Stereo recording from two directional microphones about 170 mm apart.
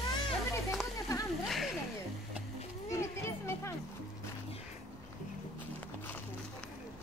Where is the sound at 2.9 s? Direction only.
15° left (ahead or behind).